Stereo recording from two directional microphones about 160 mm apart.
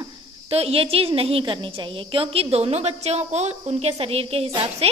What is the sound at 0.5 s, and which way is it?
A woman's voice, 40° right (ahead or behind).